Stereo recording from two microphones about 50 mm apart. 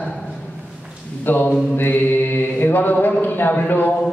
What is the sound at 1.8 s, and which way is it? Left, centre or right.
Speech, left.